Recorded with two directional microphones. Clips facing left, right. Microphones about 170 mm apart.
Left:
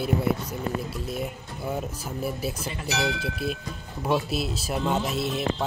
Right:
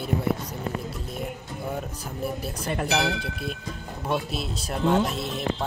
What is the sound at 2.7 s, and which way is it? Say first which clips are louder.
Speech: right 8 dB; 60° right (ahead or behind).